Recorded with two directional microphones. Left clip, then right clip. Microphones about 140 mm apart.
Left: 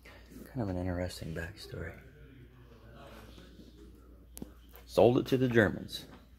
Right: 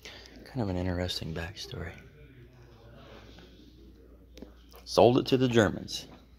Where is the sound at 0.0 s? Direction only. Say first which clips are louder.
Right 6 dB; 30° right (ahead or behind).